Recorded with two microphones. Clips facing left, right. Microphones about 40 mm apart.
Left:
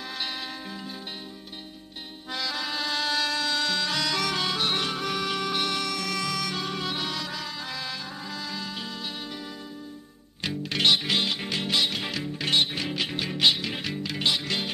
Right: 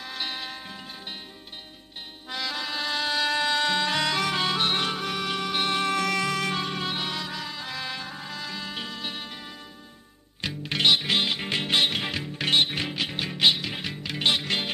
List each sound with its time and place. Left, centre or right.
0.1 s music: centre
2.3 s music: centre; by 5.9 s right
5.9 s music: right
6.6 s music: right
10.6 s music: centre
11.4 s music: right
12.0 s music: centre
14.2 s music: right